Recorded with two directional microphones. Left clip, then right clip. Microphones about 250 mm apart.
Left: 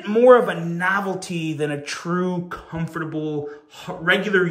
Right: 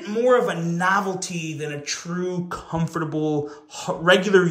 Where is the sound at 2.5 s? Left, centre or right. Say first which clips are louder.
Right 3 dB; centre.